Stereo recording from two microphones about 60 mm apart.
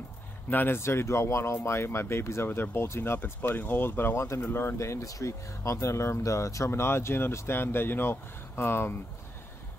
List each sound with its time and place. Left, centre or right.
0.5 s speech: left